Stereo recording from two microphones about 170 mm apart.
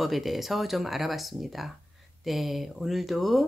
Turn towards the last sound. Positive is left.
turn(degrees=0)  # may be behind; listen again after turning